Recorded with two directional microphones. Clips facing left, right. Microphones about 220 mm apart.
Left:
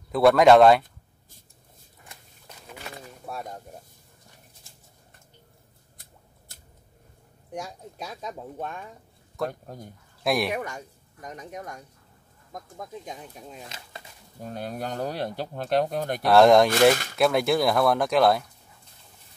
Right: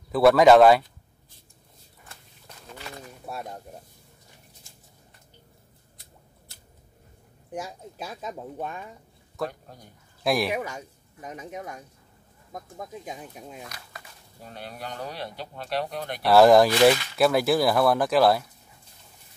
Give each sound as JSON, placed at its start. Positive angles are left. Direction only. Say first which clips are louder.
{"t": 0.1, "sound": "speech", "louder": "even", "side_deg": 0}
{"t": 3.3, "sound": "speech", "louder": "even", "side_deg": 0}
{"t": 7.5, "sound": "speech", "louder": "right 1 dB", "side_deg": -5}
{"t": 9.5, "sound": "speech", "louder": "left 6 dB", "side_deg": 45}
{"t": 10.2, "sound": "speech", "louder": "even", "side_deg": 0}
{"t": 13.7, "sound": "speech", "louder": "left 1 dB", "side_deg": 25}
{"t": 14.4, "sound": "speech", "louder": "left 6 dB", "side_deg": 45}
{"t": 16.2, "sound": "speech", "louder": "right 1 dB", "side_deg": -5}